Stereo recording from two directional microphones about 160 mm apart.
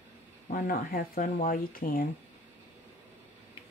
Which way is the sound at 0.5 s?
60° left (ahead or behind).